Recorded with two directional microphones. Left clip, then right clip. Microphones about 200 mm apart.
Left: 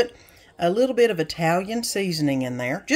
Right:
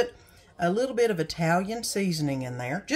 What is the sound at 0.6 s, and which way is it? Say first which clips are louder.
Speech: left 6 dB; 35° left (ahead or behind).